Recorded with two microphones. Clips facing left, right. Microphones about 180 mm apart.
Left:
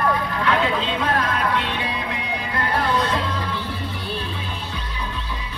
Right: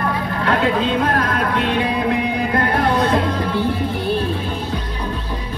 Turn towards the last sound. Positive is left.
turn(degrees=-50)  # may be behind; listen again after turning